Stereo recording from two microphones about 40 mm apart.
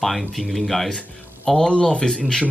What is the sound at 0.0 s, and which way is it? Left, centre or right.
Speech, centre.